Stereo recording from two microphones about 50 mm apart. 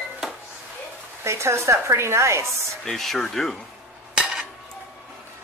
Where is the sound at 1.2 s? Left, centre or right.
Right.